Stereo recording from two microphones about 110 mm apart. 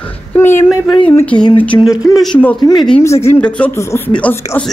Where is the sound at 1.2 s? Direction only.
10° left (ahead or behind).